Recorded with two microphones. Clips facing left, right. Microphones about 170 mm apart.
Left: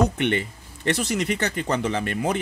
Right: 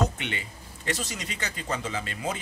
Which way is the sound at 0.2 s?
60° left (ahead or behind).